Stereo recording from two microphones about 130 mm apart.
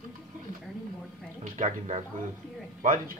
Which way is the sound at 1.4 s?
75° right (ahead or behind).